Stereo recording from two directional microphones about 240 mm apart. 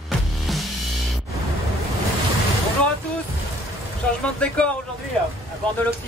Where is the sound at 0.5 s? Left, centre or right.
Centre.